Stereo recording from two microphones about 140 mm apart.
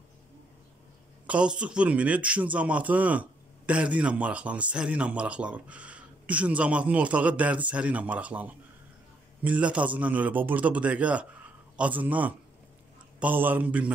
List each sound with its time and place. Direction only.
1.2 s speech: 10° right (ahead or behind)